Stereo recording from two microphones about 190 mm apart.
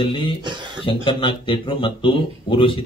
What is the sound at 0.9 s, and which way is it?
A man's voice, 25° left (ahead or behind).